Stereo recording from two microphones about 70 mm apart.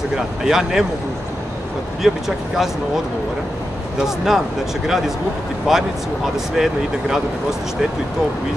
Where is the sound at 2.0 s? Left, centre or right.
Centre.